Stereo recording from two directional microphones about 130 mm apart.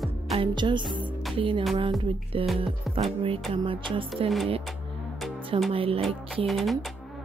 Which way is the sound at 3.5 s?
40° right (ahead or behind).